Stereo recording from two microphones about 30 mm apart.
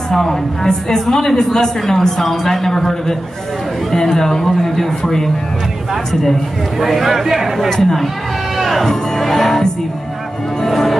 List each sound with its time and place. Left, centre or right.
0.1 s a man's voice: centre
0.7 s a woman's voice: left
6.8 s speech: centre
7.7 s a man's voice: centre
8.5 s music: centre
8.8 s a man's voice: centre
10.6 s music: centre